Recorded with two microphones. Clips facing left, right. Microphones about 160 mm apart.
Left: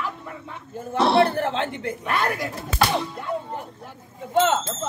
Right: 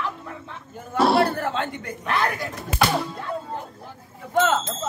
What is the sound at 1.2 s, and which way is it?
Speech, 25° left (ahead or behind).